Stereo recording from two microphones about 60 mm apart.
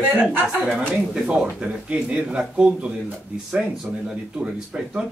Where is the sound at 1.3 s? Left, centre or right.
Centre.